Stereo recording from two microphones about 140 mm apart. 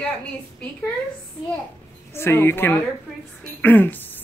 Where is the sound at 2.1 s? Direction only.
15° left (ahead or behind).